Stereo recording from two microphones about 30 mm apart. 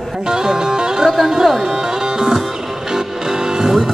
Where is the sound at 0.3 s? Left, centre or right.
Centre.